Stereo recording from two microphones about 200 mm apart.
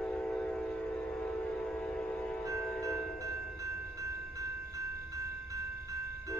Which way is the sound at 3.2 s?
15° right (ahead or behind).